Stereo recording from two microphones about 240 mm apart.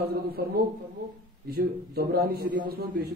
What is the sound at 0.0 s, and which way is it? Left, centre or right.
A man's voice, right.